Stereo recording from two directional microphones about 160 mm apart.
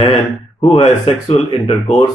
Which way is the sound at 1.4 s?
30° left (ahead or behind).